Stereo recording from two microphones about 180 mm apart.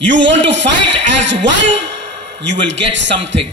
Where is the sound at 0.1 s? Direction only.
85° right.